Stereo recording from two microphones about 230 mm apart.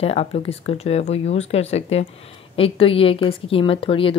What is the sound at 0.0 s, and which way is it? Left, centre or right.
Speech, left.